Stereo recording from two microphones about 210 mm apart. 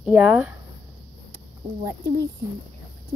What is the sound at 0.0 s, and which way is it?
Speech, 5° right (ahead or behind).